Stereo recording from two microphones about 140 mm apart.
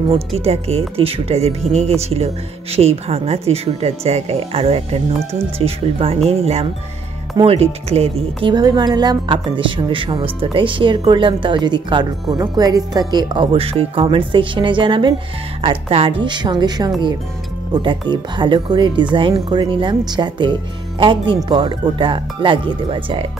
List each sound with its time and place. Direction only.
0.4 s speech: 50° right (ahead or behind)